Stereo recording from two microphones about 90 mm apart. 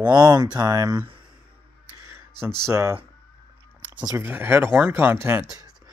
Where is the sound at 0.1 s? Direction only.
50° right (ahead or behind).